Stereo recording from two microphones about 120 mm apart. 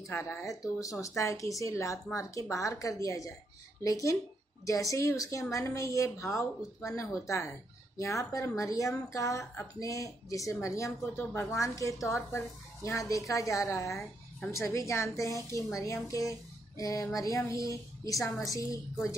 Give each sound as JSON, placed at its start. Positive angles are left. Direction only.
{"t": 0.0, "sound": "a woman's voice", "side_deg": 25}